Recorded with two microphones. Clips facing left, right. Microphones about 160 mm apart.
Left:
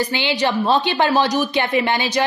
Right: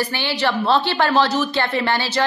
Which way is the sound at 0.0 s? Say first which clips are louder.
Left 2 dB; 20° left (ahead or behind).